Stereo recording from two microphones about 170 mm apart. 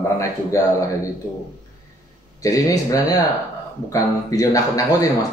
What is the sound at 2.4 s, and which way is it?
Speech, 20° left (ahead or behind).